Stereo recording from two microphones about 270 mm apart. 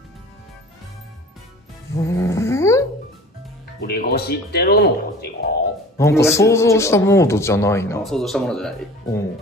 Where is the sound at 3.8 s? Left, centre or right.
Left.